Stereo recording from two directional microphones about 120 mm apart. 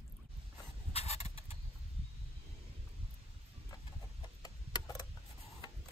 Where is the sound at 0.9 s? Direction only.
60° left (ahead or behind).